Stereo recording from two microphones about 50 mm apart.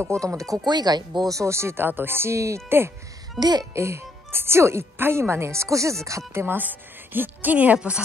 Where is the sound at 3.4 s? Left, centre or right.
Centre.